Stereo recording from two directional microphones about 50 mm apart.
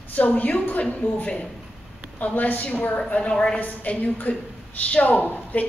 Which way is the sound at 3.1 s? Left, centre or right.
Left.